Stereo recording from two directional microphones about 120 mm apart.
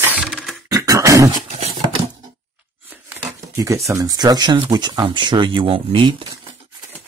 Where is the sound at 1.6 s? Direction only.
60° right (ahead or behind).